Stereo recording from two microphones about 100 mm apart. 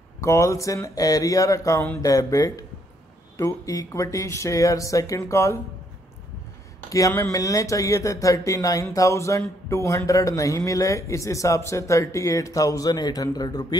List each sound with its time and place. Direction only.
0.2 s speech: 30° left (ahead or behind)
6.9 s speech: 30° left (ahead or behind)